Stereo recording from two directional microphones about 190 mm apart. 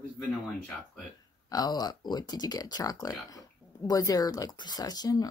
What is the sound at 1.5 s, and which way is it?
Speech, 20° left (ahead or behind).